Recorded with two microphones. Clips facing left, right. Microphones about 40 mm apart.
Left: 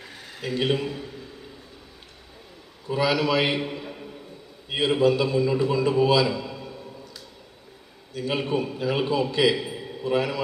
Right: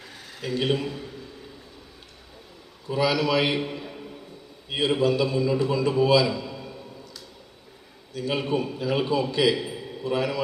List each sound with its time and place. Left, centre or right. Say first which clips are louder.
0.4 s a man's voice: left 1 dB; left
0.7 s a man's voice: left 1 dB; centre
2.9 s a man's voice: even; left
5.0 s a man's voice: left 3 dB; left
8.2 s a man's voice: even; centre